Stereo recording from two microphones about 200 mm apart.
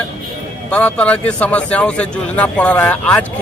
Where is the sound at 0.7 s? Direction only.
5° left (ahead or behind).